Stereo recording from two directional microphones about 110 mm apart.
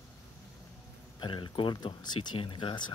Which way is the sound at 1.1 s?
45° left (ahead or behind).